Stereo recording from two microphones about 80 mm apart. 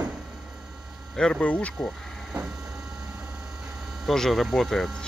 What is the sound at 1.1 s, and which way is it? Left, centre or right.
Speech, centre.